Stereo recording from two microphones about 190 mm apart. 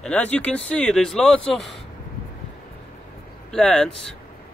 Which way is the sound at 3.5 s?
5° left (ahead or behind).